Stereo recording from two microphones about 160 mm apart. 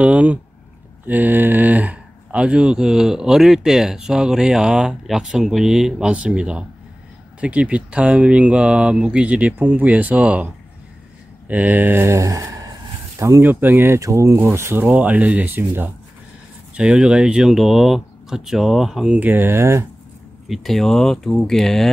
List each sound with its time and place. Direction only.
0.0 s speech: 10° right (ahead or behind)
20.4 s speech: centre (ahead or behind)